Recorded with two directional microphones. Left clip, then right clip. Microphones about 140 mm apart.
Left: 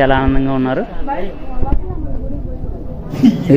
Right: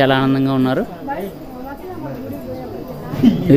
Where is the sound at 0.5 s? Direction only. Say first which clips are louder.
Left 1 dB; 40° right (ahead or behind).